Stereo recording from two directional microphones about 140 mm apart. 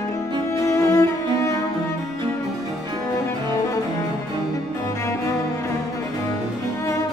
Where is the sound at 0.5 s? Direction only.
20° left (ahead or behind).